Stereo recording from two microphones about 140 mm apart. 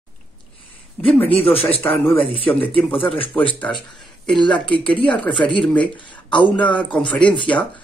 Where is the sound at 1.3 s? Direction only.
45° left (ahead or behind).